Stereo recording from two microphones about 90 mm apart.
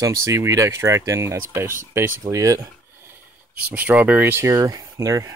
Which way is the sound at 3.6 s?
15° right (ahead or behind).